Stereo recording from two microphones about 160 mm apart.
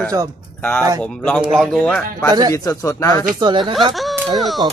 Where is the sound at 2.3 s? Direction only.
25° right (ahead or behind).